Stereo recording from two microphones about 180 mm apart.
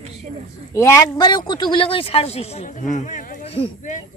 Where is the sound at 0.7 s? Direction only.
15° left (ahead or behind); by 3.4 s 45° left (ahead or behind).